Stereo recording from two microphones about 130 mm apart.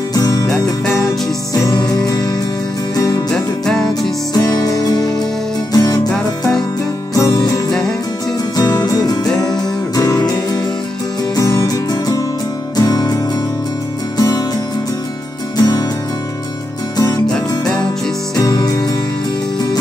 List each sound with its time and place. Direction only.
0.1 s music: 25° left (ahead or behind)
1.5 s music: 30° left (ahead or behind)
3.3 s music: 5° left (ahead or behind)
4.3 s music: 30° left (ahead or behind)
6.0 s music: 5° left (ahead or behind)
7.2 s music: 25° left (ahead or behind)
9.2 s music: 5° left (ahead or behind)
9.9 s music: 30° left (ahead or behind)
15.5 s music: 30° left (ahead or behind)
16.9 s music: 30° left (ahead or behind)
18.3 s music: 30° left (ahead or behind)